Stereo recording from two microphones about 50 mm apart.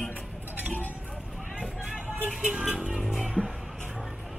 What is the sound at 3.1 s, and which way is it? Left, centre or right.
Music, centre.